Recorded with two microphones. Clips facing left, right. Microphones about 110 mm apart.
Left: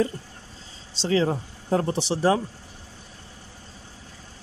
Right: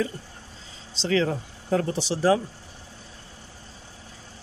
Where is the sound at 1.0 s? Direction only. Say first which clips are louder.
Left 1 dB; 25° left (ahead or behind).